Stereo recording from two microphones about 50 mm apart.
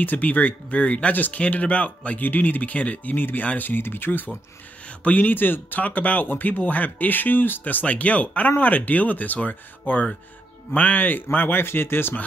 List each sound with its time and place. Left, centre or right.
0.0 s speech: left
1.1 s speech: left
4.8 s speech: left